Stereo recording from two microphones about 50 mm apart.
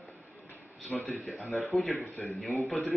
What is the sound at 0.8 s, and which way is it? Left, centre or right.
A man's voice, centre.